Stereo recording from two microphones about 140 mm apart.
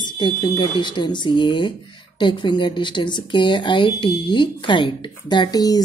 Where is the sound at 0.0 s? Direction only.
35° left (ahead or behind).